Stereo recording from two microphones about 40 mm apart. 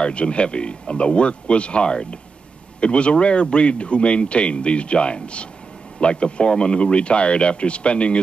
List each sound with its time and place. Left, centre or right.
0.0 s speech: left